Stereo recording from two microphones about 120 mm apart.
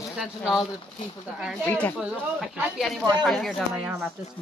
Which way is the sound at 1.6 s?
15° left (ahead or behind).